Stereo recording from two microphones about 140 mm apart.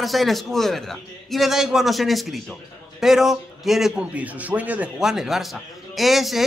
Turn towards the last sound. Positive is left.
turn(degrees=0)  # may be behind; listen again after turning